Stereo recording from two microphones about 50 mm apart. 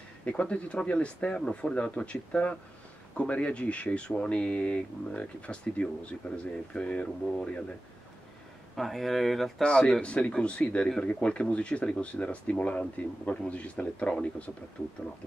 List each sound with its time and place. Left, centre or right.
0.2 s speech: left
8.7 s speech: centre
9.6 s speech: centre
14.8 s speech: left